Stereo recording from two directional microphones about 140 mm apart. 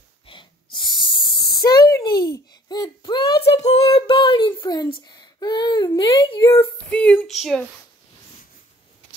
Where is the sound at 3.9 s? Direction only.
40° left (ahead or behind); by 6.7 s 20° left (ahead or behind).